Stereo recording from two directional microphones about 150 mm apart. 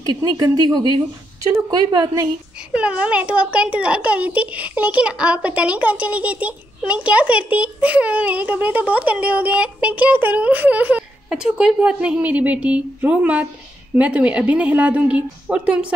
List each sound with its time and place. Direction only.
0.2 s speech: 25° right (ahead or behind)
2.7 s a child's voice: 5° right (ahead or behind)